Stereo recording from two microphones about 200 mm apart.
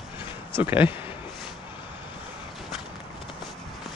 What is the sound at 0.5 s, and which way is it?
Speech, 10° right (ahead or behind).